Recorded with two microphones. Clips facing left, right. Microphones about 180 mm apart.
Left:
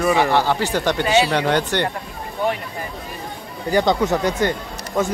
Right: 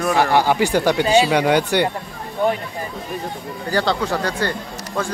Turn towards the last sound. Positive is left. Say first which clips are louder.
# left 3 dB
turn(degrees=20)  # may be behind; listen again after turning